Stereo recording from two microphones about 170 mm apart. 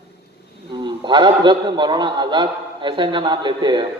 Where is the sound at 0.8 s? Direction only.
25° right (ahead or behind).